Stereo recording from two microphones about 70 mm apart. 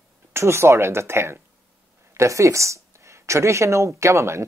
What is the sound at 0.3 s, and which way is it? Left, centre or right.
Speech, right.